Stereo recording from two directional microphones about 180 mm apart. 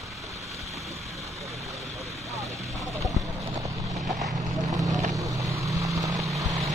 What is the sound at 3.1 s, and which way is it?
Clip-clop, 15° right (ahead or behind).